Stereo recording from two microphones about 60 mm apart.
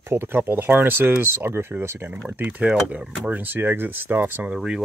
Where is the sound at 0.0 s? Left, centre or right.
Right.